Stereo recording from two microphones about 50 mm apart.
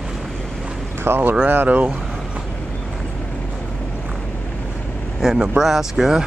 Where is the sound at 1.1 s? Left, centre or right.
Right.